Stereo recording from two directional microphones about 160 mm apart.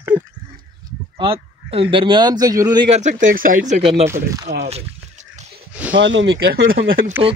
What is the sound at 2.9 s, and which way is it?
Speech, 50° right (ahead or behind).